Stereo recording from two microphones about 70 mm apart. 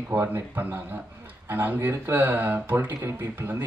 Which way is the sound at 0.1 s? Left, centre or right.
Right.